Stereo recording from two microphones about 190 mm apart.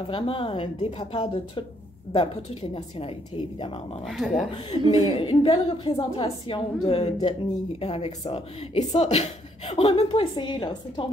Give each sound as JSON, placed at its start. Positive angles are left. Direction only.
{"t": 0.1, "sound": "speech", "side_deg": 30}
{"t": 4.1, "sound": "speech", "side_deg": 0}
{"t": 4.6, "sound": "speech", "side_deg": 30}